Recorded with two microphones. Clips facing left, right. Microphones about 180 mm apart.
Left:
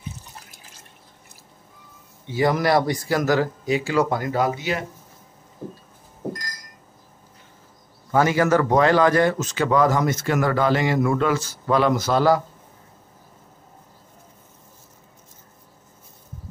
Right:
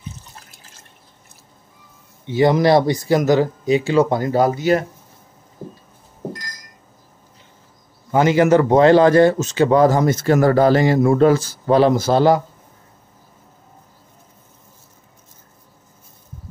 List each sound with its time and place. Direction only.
2.2 s speech: 25° right (ahead or behind); by 4.8 s 40° right (ahead or behind)
8.1 s a man's voice: 20° right (ahead or behind)